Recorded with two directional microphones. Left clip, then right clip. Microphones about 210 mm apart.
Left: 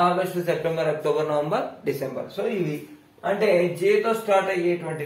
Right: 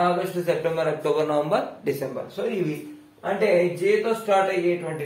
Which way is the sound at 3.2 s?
Centre (ahead or behind).